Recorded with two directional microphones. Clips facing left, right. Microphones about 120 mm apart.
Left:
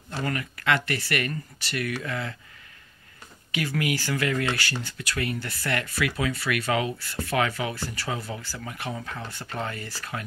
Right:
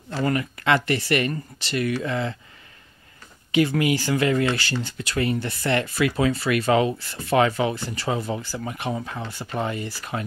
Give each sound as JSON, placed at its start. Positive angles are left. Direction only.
{"t": 0.2, "sound": "speech", "side_deg": -25}
{"t": 3.5, "sound": "speech", "side_deg": -25}